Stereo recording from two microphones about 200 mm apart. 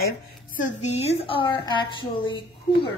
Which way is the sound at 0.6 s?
35° left (ahead or behind).